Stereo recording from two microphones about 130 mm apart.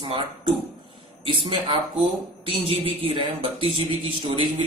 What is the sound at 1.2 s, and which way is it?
A man's voice, 40° right (ahead or behind).